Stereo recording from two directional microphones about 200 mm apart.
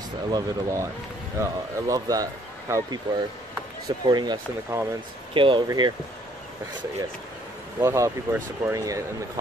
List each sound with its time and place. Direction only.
0.3 s speech: 15° right (ahead or behind)
7.8 s speech: 15° right (ahead or behind)